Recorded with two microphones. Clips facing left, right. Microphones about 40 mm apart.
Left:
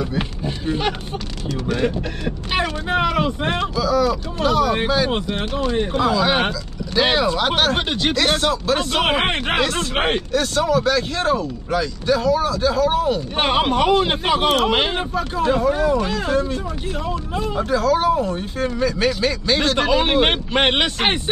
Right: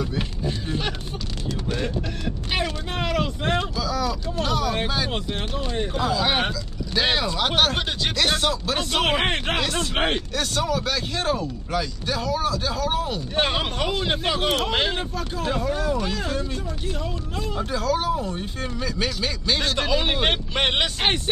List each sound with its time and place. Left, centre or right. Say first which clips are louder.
0.5 s speech: left 6 dB; left
3.8 s speech: left 7 dB; centre
7.0 s speech: left 5 dB; centre
7.7 s speech: left 5 dB; left
8.2 s speech: left 2 dB; centre
10.3 s speech: left 6 dB; centre
13.4 s speech: left 5 dB; left
17.7 s speech: left 7 dB; centre; by 21.2 s left